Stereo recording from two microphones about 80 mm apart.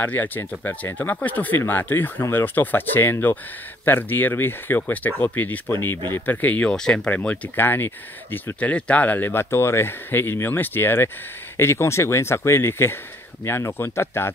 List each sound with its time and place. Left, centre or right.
0.0 s speech: left
6.7 s speech: centre; by 14.3 s left